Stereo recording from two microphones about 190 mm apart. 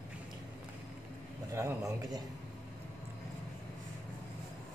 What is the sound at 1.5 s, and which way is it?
Speech, 15° right (ahead or behind).